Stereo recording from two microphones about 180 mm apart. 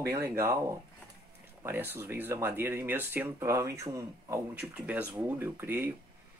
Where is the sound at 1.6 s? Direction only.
10° right (ahead or behind).